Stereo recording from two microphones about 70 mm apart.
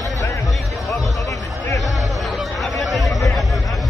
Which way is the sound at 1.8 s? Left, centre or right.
Centre.